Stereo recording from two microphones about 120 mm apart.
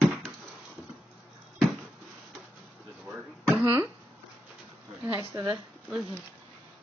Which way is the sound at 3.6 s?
20° right (ahead or behind).